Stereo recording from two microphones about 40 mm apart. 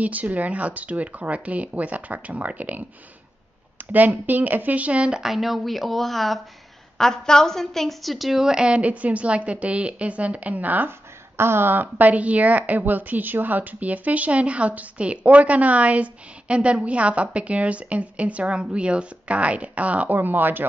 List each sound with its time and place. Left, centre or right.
0.0 s speech: right
3.9 s speech: right
5.2 s speech: centre
7.0 s a woman's voice: centre
8.6 s speech: right
11.3 s speech: right
20.2 s speech: right